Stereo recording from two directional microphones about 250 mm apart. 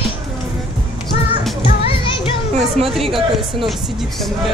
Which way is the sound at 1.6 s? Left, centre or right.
Left.